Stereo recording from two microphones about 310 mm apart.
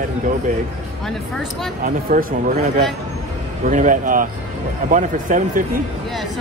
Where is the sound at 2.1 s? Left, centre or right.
Right.